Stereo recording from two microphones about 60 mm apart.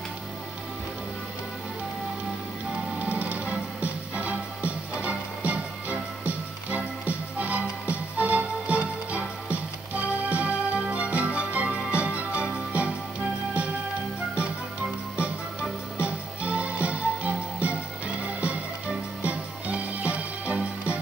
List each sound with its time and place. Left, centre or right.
2.9 s music: right
4.6 s music: right
7.4 s music: right
14.3 s music: centre